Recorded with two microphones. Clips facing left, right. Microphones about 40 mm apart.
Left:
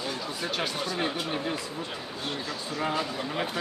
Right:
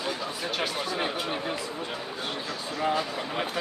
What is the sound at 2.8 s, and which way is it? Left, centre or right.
Speech, centre.